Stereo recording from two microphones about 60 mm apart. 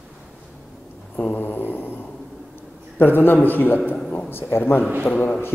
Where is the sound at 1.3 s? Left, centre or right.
Left.